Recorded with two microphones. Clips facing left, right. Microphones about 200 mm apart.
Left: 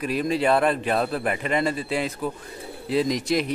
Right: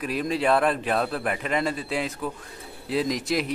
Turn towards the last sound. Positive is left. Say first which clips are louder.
# left 2 dB
turn(degrees=0)  # may be behind; listen again after turning